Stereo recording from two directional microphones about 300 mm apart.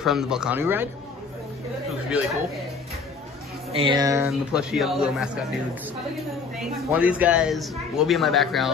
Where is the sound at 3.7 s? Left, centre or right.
Centre.